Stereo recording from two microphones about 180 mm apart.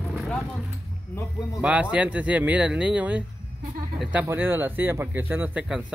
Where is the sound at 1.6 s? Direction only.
5° right (ahead or behind).